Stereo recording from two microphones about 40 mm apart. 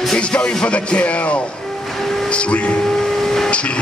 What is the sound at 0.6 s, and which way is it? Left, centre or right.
Speech, left.